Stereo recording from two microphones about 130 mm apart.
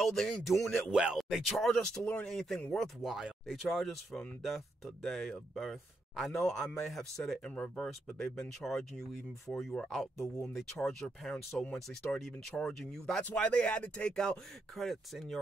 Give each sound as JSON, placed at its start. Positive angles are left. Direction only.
{"t": 0.0, "sound": "speech", "side_deg": 5}
{"t": 10.1, "sound": "speech", "side_deg": 25}
{"t": 10.4, "sound": "speech", "side_deg": 5}